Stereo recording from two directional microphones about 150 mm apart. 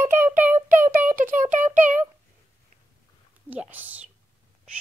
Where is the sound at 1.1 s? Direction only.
65° right (ahead or behind).